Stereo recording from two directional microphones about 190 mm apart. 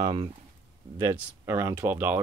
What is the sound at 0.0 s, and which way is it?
Speech, 25° right (ahead or behind).